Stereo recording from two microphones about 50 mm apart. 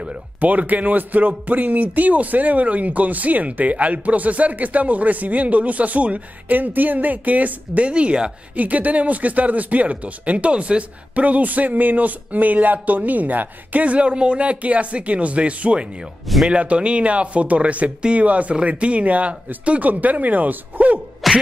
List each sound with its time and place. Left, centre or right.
0.4 s speech: right
21.2 s whack: centre